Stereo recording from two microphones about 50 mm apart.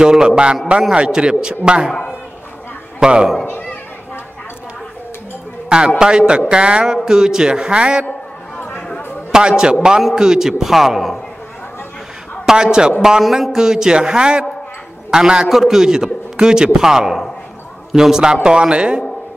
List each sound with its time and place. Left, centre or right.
0.0 s a man's voice: centre
3.0 s speech: centre
5.7 s a man's voice: centre
8.5 s chatter: left
9.3 s a man's voice: centre
12.5 s a man's voice: centre